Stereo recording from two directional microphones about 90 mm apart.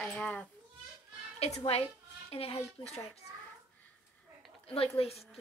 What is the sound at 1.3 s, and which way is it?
A woman's voice, 90° left.